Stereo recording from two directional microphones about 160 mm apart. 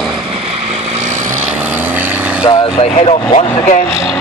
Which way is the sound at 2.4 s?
30° left (ahead or behind).